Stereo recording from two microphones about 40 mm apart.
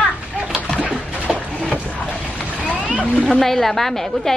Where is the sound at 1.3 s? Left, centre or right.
Right.